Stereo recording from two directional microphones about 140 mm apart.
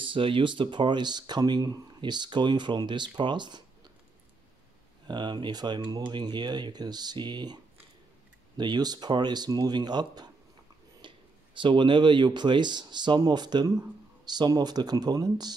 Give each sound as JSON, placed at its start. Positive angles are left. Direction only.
{"t": 0.0, "sound": "speech", "side_deg": -40}
{"t": 5.0, "sound": "speech", "side_deg": -30}
{"t": 8.5, "sound": "speech", "side_deg": -30}